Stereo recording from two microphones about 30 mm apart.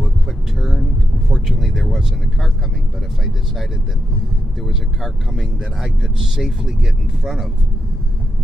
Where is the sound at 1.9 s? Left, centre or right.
Centre.